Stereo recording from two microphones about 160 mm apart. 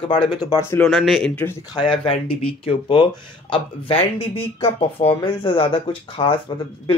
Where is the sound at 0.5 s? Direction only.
15° left (ahead or behind).